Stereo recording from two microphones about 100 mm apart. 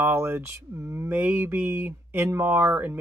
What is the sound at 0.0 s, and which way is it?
Speech, 20° right (ahead or behind).